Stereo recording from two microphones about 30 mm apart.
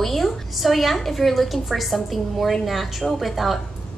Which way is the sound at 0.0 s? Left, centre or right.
Centre.